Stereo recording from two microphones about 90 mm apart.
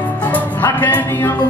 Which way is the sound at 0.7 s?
20° left (ahead or behind).